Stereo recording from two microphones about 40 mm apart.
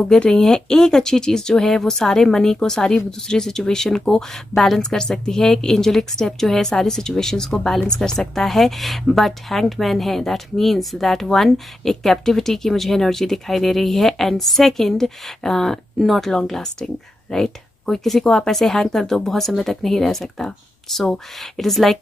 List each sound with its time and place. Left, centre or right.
0.3 s a woman's voice: centre
8.5 s a woman's voice: centre
16.0 s a woman's voice: centre